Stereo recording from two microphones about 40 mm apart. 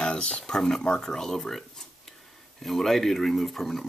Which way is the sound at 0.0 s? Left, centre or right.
Left.